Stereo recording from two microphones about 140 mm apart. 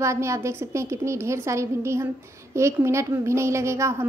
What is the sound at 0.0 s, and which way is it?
A woman's voice, 20° right (ahead or behind).